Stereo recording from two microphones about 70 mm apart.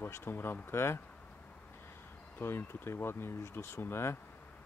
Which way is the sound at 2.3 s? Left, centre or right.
Left.